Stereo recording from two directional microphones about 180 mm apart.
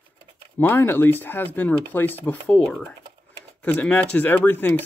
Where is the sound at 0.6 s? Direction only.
10° left (ahead or behind).